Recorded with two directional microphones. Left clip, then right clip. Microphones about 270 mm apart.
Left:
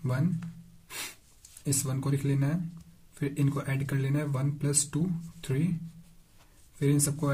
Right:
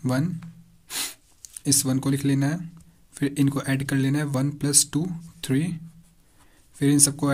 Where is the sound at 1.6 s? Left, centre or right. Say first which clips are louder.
Right 9 dB; right.